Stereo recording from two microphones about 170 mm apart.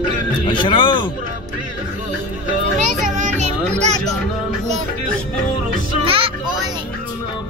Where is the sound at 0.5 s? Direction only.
30° left (ahead or behind).